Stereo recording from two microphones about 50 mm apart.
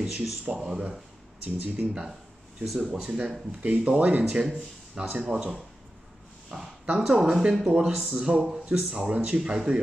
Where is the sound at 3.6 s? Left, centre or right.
Right.